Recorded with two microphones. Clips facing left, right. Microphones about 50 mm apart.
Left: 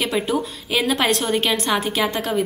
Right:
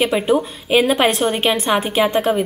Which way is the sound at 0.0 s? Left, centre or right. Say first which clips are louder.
Right 5 dB; right.